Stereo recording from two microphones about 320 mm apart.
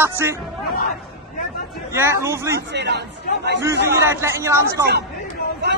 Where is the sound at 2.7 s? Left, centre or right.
Right.